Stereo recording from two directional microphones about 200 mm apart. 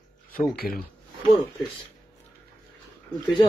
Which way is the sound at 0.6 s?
50° left (ahead or behind).